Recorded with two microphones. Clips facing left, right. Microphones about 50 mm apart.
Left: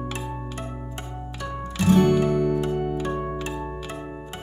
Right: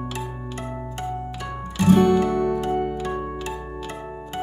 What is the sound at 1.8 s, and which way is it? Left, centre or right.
Music, centre.